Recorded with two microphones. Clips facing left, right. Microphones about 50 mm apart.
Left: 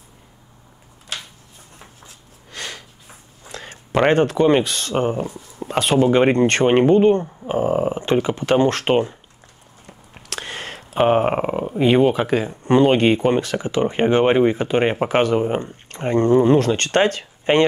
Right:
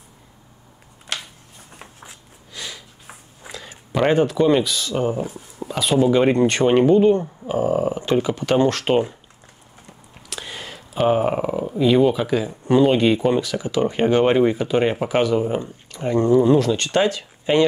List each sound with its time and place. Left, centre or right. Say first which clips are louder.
2.5 s a sound: left 2 dB; left
4.1 s speech: right 1 dB; left
4.4 s speech: left 1 dB; left
4.6 s speech: left 1 dB; left
5.9 s speech: left 1 dB; left
10.3 s a sound: left 3 dB; left
11.8 s speech: left 1 dB; left
14.6 s speech: left 1 dB; left